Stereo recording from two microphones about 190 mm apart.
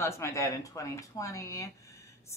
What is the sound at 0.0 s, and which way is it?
Speech, 15° left (ahead or behind).